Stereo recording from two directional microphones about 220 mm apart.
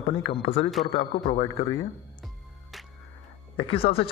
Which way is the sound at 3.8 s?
25° left (ahead or behind).